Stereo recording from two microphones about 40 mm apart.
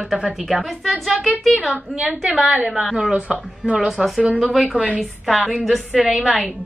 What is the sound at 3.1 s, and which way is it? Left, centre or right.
A woman's voice, right.